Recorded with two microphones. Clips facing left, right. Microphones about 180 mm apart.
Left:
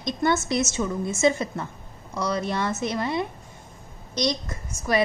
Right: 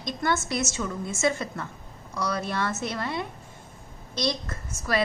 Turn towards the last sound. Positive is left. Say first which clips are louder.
# left 3 dB
turn(degrees=20)  # may be behind; listen again after turning